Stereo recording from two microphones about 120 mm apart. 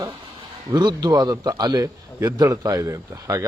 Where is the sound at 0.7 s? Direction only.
35° right (ahead or behind).